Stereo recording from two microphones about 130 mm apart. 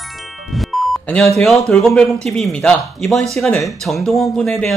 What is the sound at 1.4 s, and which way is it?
Speech, 5° left (ahead or behind).